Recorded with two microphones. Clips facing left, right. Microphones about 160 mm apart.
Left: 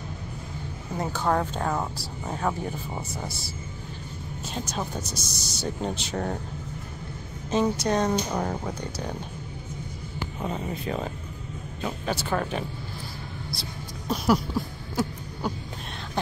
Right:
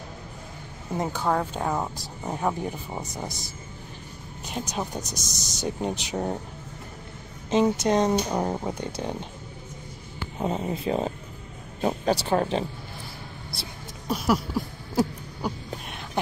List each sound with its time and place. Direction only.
0.9 s speech: 10° right (ahead or behind)
4.6 s speech: 15° right (ahead or behind)
7.5 s speech: 20° right (ahead or behind)
10.4 s speech: 30° right (ahead or behind)
14.0 s a sound: 5° right (ahead or behind)
15.4 s speech: 10° right (ahead or behind)